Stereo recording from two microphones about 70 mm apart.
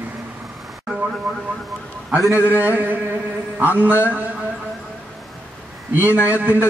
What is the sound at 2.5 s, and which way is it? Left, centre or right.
Mantra, right.